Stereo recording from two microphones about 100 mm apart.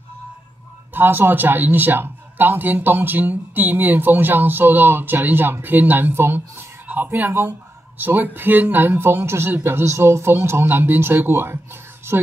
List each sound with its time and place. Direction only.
0.9 s a man's voice: 20° right (ahead or behind)